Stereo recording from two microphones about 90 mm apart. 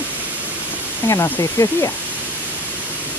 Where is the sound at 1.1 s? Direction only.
35° left (ahead or behind).